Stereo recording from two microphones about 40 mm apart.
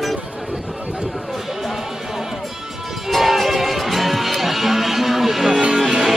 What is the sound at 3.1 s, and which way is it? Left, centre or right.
Music, centre.